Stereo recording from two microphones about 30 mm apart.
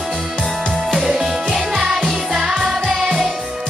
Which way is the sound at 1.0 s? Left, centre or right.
Right.